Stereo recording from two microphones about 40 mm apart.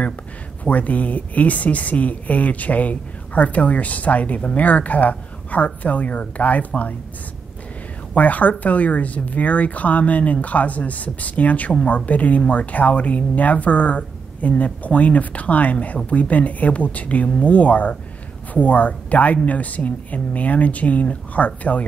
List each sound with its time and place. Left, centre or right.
0.7 s speech: left
8.1 s speech: left